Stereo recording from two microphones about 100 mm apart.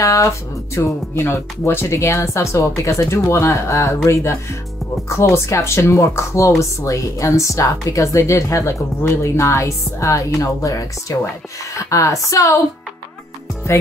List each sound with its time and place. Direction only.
0.0 s a woman's voice: 30° left (ahead or behind)